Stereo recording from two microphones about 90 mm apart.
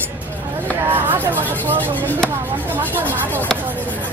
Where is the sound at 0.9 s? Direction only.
20° right (ahead or behind).